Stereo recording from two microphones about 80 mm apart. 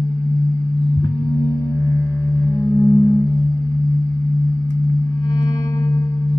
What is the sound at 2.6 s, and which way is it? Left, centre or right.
Music, left.